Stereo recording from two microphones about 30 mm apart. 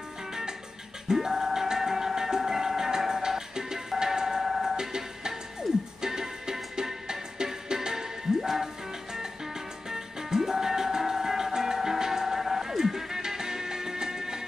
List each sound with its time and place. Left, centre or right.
1.0 s music: centre
4.0 s tick-tock: centre
4.4 s tick-tock: centre
4.7 s music: right
9.8 s music: centre